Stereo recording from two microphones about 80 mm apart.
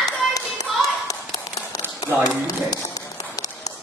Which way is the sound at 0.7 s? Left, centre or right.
Centre.